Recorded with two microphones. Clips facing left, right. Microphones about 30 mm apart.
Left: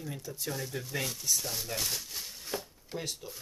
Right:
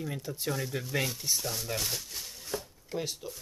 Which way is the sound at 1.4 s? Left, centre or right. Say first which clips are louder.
Right 1 dB; centre.